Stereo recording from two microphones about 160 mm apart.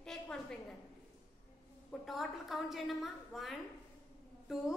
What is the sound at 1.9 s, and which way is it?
A woman's voice, centre (ahead or behind).